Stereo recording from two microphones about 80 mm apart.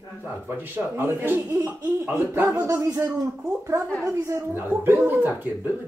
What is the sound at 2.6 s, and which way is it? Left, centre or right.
Speech, right.